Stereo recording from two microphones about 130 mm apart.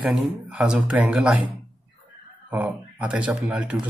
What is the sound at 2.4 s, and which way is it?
Speech, 15° right (ahead or behind).